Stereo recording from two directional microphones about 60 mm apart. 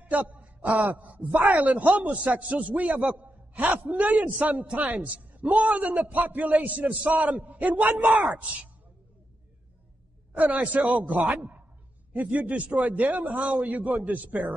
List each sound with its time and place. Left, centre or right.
0.0 s a man's voice: right
10.3 s a man's voice: right